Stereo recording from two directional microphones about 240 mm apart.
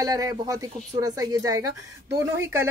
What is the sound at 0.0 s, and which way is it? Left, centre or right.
Speech, centre.